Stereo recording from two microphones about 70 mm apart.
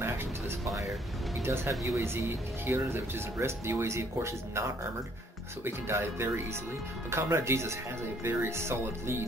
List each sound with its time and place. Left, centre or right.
1.4 s speech: right
1.7 s speech: right